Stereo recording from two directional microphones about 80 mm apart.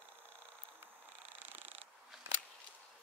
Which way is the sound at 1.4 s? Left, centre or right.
Right.